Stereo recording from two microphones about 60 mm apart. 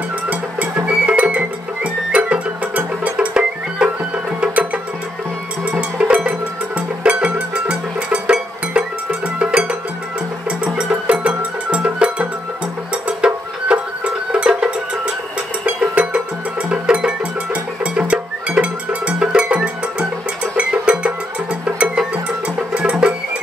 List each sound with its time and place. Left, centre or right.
0.3 s music: right
5.7 s music: centre